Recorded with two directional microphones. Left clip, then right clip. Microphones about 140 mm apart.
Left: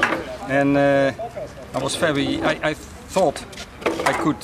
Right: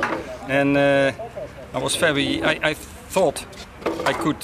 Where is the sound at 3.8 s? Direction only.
40° left (ahead or behind).